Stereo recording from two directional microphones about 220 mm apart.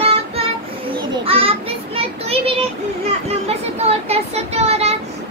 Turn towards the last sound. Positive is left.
turn(degrees=-30)  # may be behind; listen again after turning